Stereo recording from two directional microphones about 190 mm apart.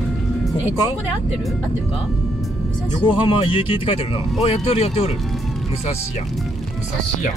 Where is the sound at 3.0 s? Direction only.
25° left (ahead or behind).